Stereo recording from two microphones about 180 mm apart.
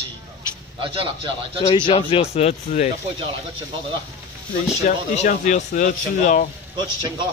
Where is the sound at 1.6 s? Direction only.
30° left (ahead or behind).